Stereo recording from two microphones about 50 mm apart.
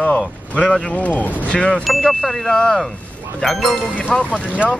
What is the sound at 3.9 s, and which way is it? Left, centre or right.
Speech, left.